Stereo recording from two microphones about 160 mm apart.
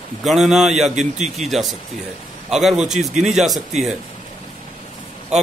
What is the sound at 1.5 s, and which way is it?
Speech, centre (ahead or behind).